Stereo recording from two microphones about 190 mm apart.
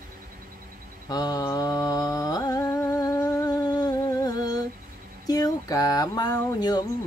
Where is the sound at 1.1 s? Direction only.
20° left (ahead or behind).